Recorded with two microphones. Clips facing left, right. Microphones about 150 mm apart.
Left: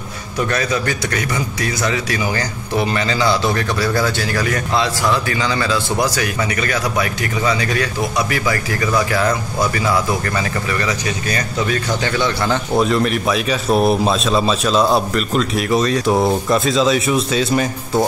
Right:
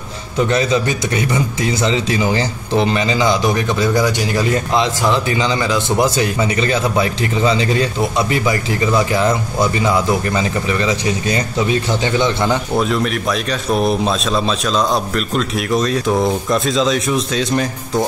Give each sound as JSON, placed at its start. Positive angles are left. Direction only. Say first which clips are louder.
{"t": 0.4, "sound": "a man's voice", "louder": "right 4 dB", "side_deg": -25}
{"t": 12.7, "sound": "a man's voice", "louder": "left 1 dB", "side_deg": 0}